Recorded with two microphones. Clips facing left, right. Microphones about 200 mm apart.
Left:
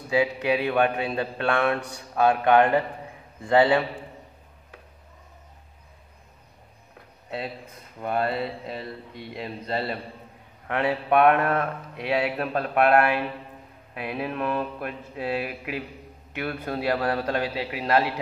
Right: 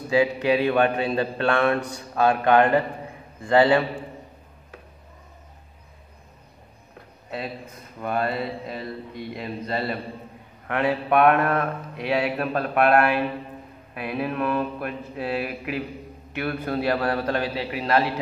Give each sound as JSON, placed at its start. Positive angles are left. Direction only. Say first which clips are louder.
{"t": 0.1, "sound": "a man's voice", "louder": "right 3 dB", "side_deg": 10}
{"t": 8.0, "sound": "a sound", "louder": "even", "side_deg": 25}
{"t": 16.3, "sound": "a man's voice", "louder": "right 3 dB", "side_deg": 15}